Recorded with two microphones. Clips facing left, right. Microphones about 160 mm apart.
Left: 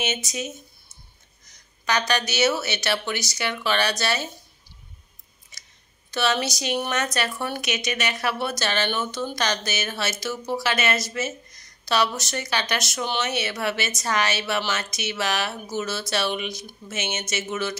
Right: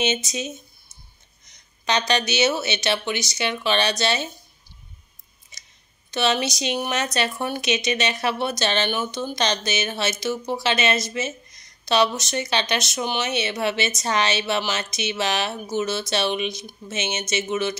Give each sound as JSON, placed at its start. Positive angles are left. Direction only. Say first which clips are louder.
{"t": 0.0, "sound": "speech", "louder": "right 4 dB", "side_deg": -25}
{"t": 5.5, "sound": "scissors", "louder": "right 1 dB", "side_deg": -20}
{"t": 6.1, "sound": "speech", "louder": "right 2 dB", "side_deg": -20}